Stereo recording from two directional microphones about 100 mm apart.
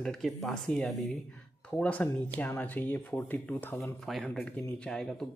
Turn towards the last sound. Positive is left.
turn(degrees=5)  # may be behind; listen again after turning